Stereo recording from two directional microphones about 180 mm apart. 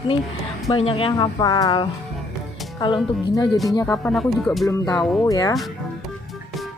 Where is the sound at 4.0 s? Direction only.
Centre (ahead or behind).